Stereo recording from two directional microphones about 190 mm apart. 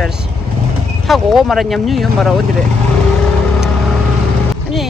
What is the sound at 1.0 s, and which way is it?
Speech, centre (ahead or behind).